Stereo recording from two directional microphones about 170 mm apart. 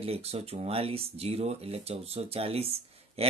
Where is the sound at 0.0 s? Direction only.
35° right (ahead or behind).